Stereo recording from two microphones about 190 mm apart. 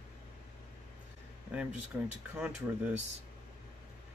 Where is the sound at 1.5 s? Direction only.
5° right (ahead or behind).